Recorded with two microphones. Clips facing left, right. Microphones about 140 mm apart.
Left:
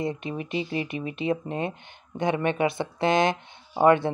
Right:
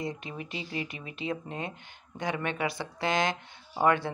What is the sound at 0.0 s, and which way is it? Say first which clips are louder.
Speech: left 6 dB; 25° left (ahead or behind).